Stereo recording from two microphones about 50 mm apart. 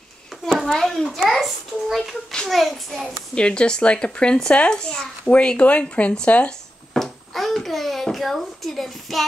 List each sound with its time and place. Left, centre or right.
0.7 s a child's voice: centre
3.3 s speech: centre
6.9 s a child's voice: centre